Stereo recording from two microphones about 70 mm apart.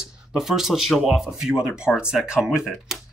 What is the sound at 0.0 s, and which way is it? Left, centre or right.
Speech, centre.